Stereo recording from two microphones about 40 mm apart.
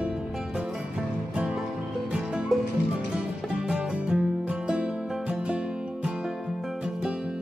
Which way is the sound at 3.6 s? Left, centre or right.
Right.